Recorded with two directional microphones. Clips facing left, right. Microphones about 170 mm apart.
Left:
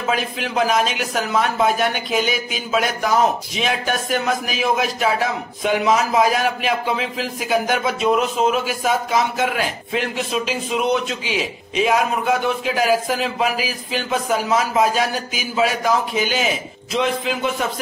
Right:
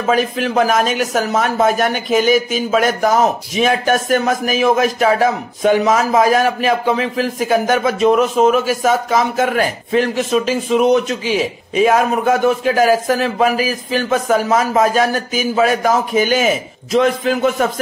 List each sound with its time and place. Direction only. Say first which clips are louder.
0.0 s speech: right 7 dB; 45° right (ahead or behind)